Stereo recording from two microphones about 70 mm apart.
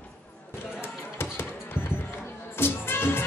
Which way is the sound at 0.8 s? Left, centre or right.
Left.